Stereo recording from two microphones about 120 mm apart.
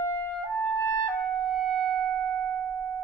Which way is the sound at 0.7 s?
35° left (ahead or behind).